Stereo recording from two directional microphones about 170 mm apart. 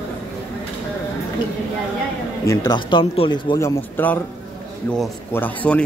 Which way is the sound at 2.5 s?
25° left (ahead or behind).